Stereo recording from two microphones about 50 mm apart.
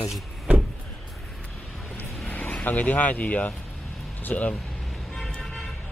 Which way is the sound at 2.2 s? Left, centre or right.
Left.